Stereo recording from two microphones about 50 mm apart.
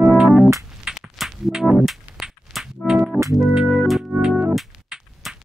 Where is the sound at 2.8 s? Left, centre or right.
Centre.